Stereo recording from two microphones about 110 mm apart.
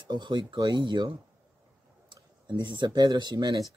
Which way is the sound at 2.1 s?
45° right (ahead or behind).